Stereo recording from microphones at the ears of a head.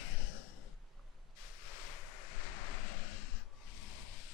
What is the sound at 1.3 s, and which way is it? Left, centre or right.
Vehicle, left.